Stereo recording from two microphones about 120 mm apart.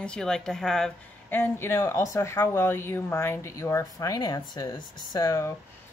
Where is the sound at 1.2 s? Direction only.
15° left (ahead or behind).